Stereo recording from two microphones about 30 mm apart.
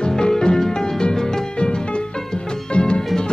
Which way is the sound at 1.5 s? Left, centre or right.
Left.